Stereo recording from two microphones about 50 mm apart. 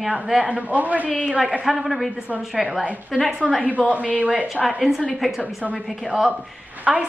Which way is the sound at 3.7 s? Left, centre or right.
Right.